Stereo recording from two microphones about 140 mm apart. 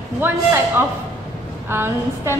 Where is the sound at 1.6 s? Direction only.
15° right (ahead or behind).